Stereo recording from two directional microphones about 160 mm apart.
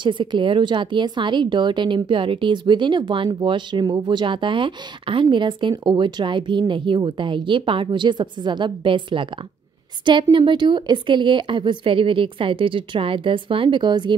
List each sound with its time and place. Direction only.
0.0 s a woman's voice: 30° right (ahead or behind)
10.3 s a woman's voice: 30° right (ahead or behind)